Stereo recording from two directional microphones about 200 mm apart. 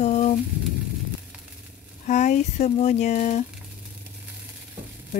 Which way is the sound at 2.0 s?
35° left (ahead or behind).